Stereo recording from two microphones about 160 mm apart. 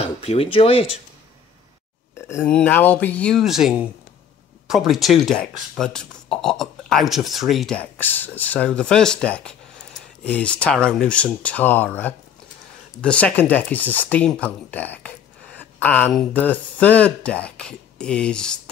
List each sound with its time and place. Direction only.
0.0 s speech: 40° left (ahead or behind)
2.2 s speech: 15° left (ahead or behind)